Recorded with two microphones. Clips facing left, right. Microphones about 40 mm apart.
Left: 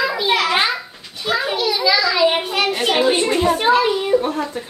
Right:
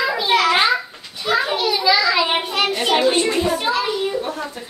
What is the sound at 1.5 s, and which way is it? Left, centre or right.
Children playing, centre.